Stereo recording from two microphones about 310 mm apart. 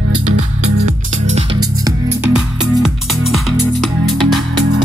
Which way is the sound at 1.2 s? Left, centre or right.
Centre.